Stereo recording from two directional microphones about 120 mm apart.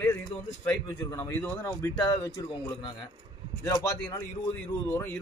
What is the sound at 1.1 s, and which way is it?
Speech, 20° left (ahead or behind).